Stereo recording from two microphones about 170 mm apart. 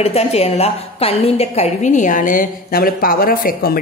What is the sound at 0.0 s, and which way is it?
A woman's voice, 35° left (ahead or behind).